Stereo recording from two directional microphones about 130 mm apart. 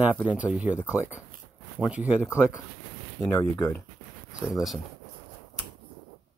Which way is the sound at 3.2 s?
20° left (ahead or behind).